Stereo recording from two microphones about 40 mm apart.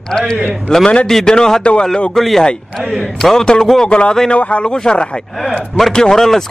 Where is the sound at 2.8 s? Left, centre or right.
Centre.